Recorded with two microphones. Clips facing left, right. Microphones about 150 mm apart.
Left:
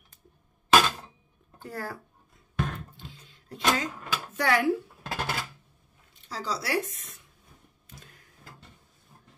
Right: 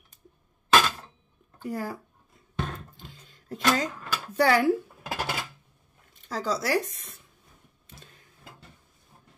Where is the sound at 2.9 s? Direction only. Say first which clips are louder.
Left 1 dB; 45° right (ahead or behind).